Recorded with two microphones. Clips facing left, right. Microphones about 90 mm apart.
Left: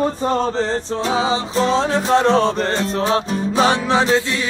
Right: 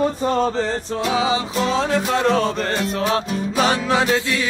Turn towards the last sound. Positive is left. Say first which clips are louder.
# left 2 dB
turn(degrees=25)  # may be behind; listen again after turning